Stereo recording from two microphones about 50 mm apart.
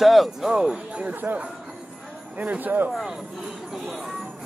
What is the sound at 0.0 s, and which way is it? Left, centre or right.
Speech, centre.